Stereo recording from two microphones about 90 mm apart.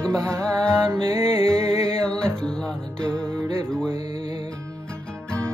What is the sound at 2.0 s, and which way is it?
Music, 10° left (ahead or behind).